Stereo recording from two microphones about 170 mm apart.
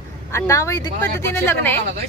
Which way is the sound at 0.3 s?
15° left (ahead or behind).